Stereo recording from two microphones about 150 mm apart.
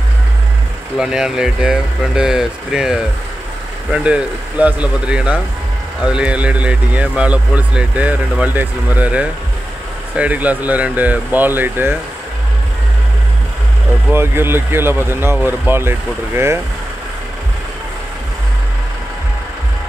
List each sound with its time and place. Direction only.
0.9 s speech: 5° right (ahead or behind)
14.1 s speech: 15° right (ahead or behind)